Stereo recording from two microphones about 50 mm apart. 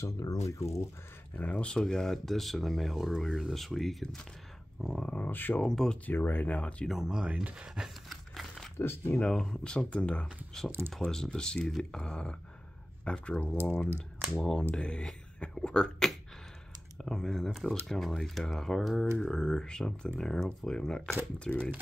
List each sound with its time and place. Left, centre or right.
0.0 s speech: left
1.3 s speech: left
1.6 s speech: centre
5.0 s speech: left
5.3 s speech: left
5.7 s speech: centre
6.0 s speech: left
6.9 s speech: centre
8.7 s speech: left
9.2 s speech: centre
11.0 s speech: centre
19.2 s speech: centre